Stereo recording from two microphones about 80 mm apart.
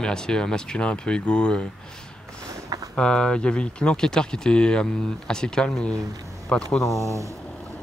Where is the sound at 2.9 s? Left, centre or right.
Centre.